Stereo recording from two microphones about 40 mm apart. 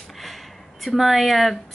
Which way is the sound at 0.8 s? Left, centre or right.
Centre.